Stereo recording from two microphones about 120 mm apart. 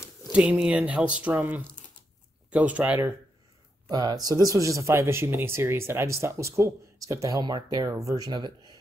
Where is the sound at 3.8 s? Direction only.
30° right (ahead or behind).